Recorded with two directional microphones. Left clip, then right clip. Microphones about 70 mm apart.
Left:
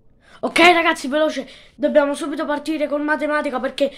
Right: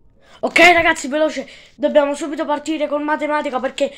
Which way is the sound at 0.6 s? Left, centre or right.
Left.